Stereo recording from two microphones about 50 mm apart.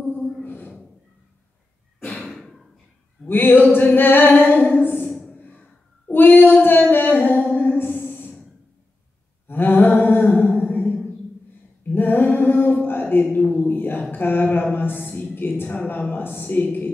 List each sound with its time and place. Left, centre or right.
0.4 s gasp: left
2.2 s a sound: centre
3.3 s singing: left
5.3 s a sound: left
6.1 s female singing: left
7.5 s music: left
9.5 s a sound: left
14.1 s a woman's voice: left
16.1 s singing: left